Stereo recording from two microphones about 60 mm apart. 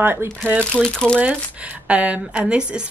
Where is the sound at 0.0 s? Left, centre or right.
Right.